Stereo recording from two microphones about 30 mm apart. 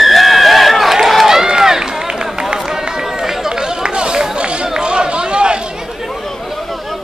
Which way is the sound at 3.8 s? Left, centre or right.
Right.